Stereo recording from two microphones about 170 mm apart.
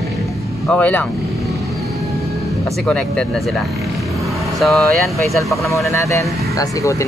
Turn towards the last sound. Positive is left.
turn(degrees=20)  # may be behind; listen again after turning